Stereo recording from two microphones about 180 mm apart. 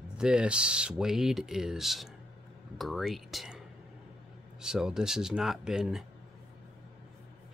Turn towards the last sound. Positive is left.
turn(degrees=-5)  # may be behind; listen again after turning